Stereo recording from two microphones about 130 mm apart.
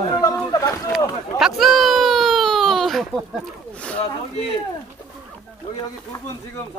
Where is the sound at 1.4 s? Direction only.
Centre (ahead or behind).